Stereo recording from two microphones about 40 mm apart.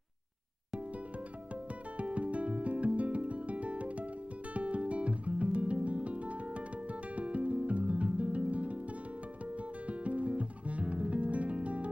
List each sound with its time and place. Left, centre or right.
2.0 s music: right
9.8 s music: right